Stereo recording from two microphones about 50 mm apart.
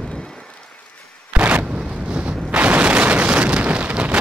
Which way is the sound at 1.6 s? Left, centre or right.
Centre.